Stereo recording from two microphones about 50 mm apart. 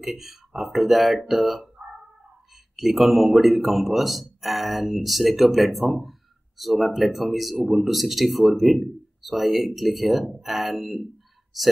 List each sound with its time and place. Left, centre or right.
0.0 s speech: centre
1.8 s cat: right
2.7 s speech: centre